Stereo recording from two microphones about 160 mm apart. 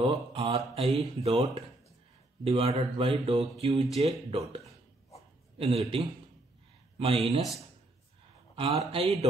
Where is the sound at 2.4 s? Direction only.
35° right (ahead or behind).